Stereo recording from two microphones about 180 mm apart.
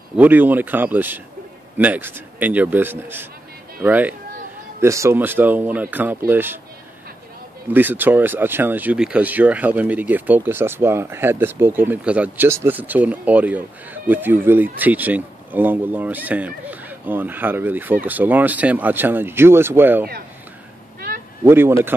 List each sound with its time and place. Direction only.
0.2 s speech: 10° right (ahead or behind)
7.7 s speech: 10° right (ahead or behind)
21.5 s speech: 15° right (ahead or behind)